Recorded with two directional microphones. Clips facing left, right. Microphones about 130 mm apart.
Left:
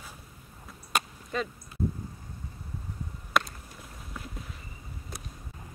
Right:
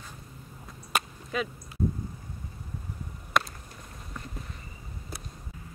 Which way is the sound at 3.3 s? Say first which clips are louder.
Even; centre (ahead or behind).